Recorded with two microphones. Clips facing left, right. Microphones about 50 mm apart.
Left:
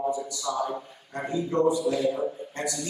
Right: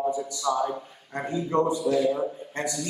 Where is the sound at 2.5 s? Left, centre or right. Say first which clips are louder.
Right 4 dB; right.